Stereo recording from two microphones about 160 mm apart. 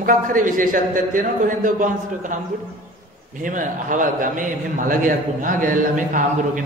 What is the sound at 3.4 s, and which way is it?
A man's voice, 55° right (ahead or behind).